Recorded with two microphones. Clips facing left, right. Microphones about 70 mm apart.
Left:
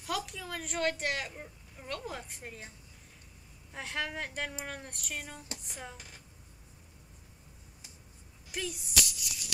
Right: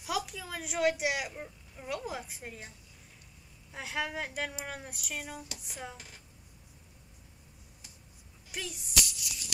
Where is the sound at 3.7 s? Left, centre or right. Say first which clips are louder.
Right 1 dB; centre.